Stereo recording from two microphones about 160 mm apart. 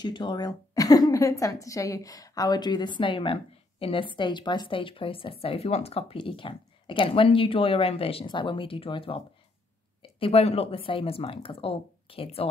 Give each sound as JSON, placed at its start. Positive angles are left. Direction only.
{"t": 0.0, "sound": "a woman's voice", "side_deg": 30}